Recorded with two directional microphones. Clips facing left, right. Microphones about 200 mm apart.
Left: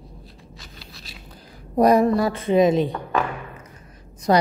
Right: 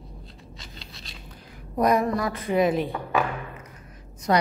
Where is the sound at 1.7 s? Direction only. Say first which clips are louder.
Left 6 dB; 35° left (ahead or behind).